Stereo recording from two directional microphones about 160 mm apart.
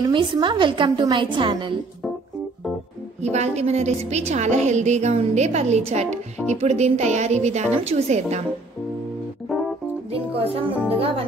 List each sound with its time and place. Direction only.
0.1 s a woman's voice: 30° right (ahead or behind)
3.2 s a woman's voice: 45° right (ahead or behind)
10.1 s music: 35° right (ahead or behind)